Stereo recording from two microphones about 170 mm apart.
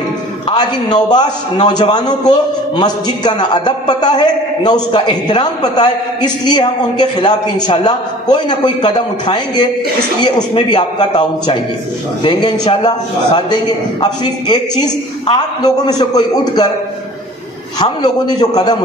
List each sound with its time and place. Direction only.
0.5 s a man's voice: 25° left (ahead or behind)
17.7 s a man's voice: 25° left (ahead or behind)